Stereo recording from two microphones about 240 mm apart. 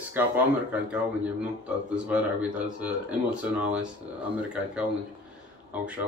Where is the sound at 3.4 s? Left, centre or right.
Centre.